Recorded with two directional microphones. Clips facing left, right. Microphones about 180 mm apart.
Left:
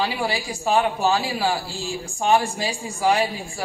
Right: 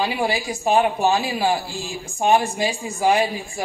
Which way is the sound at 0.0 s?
20° right (ahead or behind).